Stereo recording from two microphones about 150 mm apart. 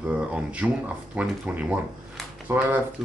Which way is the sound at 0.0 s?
10° right (ahead or behind).